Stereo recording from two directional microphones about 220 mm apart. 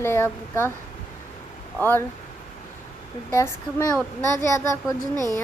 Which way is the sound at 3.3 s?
15° left (ahead or behind).